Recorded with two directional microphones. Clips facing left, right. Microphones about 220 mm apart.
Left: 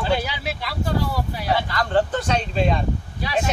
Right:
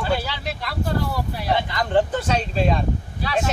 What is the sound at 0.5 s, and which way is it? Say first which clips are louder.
Speech: even; centre (ahead or behind).